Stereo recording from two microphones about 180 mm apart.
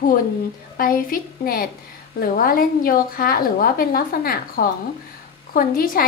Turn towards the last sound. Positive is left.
turn(degrees=55)  # may be behind; listen again after turning